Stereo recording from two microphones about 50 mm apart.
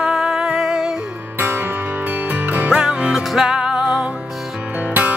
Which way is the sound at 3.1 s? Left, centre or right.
Centre.